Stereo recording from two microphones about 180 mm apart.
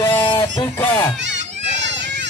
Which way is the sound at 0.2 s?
20° left (ahead or behind).